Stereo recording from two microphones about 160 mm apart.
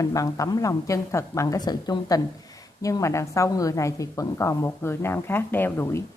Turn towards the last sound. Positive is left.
turn(degrees=10)  # may be behind; listen again after turning